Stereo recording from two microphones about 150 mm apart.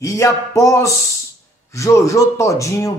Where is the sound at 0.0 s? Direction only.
20° left (ahead or behind).